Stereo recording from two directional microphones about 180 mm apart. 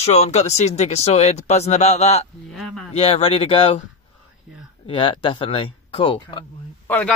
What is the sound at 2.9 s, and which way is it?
Speech, 35° left (ahead or behind).